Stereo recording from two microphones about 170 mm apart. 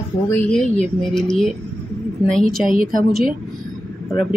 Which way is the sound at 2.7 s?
55° right (ahead or behind).